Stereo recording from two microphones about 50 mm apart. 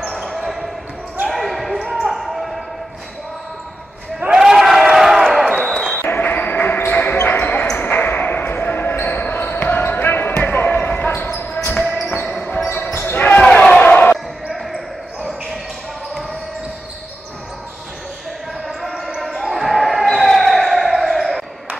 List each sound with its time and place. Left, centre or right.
0.2 s basketball bounce: centre
4.4 s a sound: centre
5.7 s basketball bounce: centre
6.0 s basketball bounce: left
12.2 s basketball bounce: left
12.9 s basketball bounce: left
13.4 s basketball bounce: centre
18.7 s basketball bounce: centre